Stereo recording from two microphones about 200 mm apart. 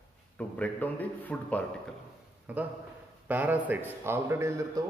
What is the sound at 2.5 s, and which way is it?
A man's voice, 5° right (ahead or behind).